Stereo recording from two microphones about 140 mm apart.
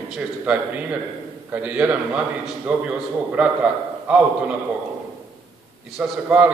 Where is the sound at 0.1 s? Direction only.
10° right (ahead or behind).